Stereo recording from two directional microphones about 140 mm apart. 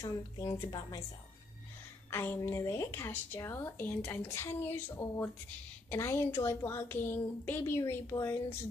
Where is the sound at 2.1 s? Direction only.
15° left (ahead or behind).